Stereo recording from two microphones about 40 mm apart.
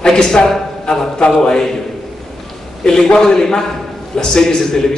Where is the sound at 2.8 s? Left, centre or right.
Centre.